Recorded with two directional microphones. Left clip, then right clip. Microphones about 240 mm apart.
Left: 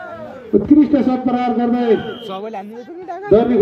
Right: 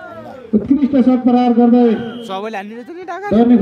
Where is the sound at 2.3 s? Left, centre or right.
Centre.